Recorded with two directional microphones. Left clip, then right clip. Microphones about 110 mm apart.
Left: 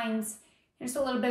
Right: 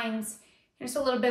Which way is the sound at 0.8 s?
25° right (ahead or behind).